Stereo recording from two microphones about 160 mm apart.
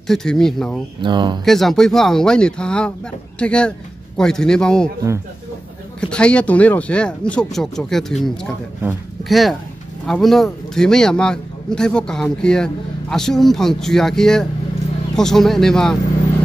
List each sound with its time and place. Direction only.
0.0 s a man's voice: centre (ahead or behind)
1.0 s speech: 30° right (ahead or behind)
1.4 s a man's voice: centre (ahead or behind)
5.9 s a man's voice: 5° left (ahead or behind)